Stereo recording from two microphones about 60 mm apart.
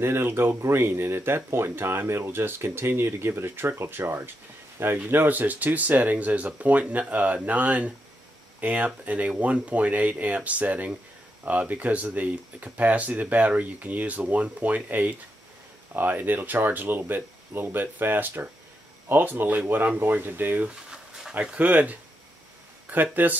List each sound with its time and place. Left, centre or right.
0.0 s speech: right
4.9 s speech: right
20.6 s a sound: centre
21.4 s speech: right